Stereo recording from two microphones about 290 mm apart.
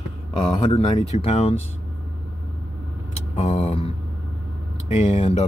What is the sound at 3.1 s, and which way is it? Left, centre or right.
Speech, left.